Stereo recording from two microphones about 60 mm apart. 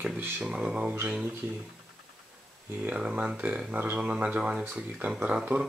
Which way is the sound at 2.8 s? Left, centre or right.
Centre.